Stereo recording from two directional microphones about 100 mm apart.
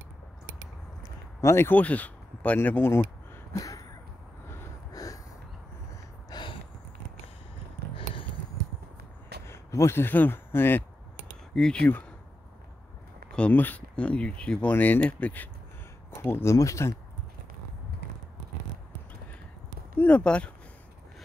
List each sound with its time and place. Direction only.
1.0 s speech: 30° left (ahead or behind)
3.5 s a sound: 35° left (ahead or behind)
4.9 s snort: 35° left (ahead or behind)
6.3 s a sound: 40° left (ahead or behind)
7.9 s a sound: 65° left (ahead or behind)
9.5 s speech: 25° left (ahead or behind)
11.5 s speech: 10° left (ahead or behind)
13.3 s speech: 15° left (ahead or behind)
16.1 s speech: 25° left (ahead or behind)
20.0 s speech: 15° left (ahead or behind)